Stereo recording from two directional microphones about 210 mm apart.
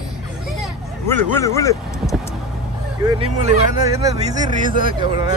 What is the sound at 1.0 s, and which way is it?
Speech, 10° left (ahead or behind).